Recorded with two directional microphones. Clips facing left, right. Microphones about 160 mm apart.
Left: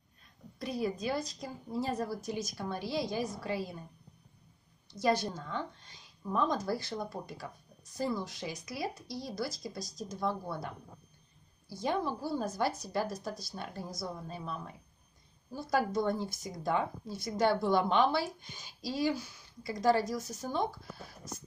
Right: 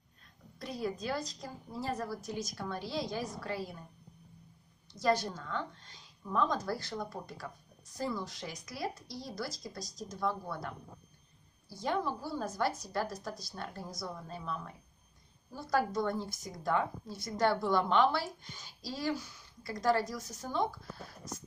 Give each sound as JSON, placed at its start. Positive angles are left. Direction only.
{"t": 0.6, "sound": "a woman's voice", "side_deg": 10}
{"t": 5.2, "sound": "a woman's voice", "side_deg": 15}
{"t": 11.7, "sound": "a woman's voice", "side_deg": 15}
{"t": 20.1, "sound": "speech", "side_deg": 25}